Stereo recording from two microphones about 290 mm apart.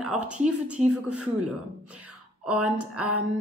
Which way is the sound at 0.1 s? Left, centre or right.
Right.